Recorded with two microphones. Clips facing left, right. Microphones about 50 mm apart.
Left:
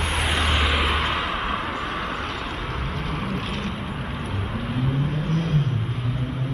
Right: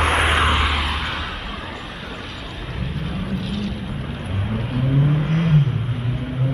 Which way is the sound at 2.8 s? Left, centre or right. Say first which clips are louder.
Even; left.